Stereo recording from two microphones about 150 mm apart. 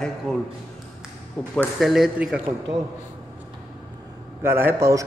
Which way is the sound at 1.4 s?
5° left (ahead or behind).